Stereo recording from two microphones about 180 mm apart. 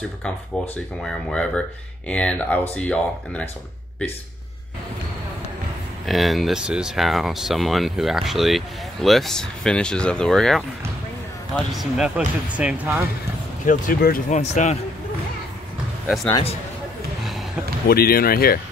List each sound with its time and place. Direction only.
1.0 s speech: 5° left (ahead or behind)
6.0 s speech: centre (ahead or behind)
13.7 s speech: 50° left (ahead or behind)
14.5 s speech: 40° left (ahead or behind)
17.8 s speech: 55° left (ahead or behind)